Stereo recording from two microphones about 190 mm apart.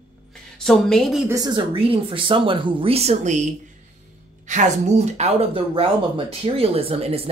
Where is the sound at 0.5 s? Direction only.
Centre (ahead or behind).